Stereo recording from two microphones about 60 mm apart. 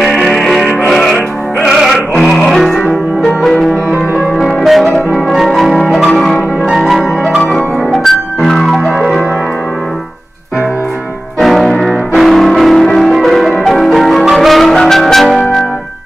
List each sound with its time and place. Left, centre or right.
0.0 s music: centre
1.6 s music: centre
1.9 s music: centre
4.6 s music: centre
11.3 s music: centre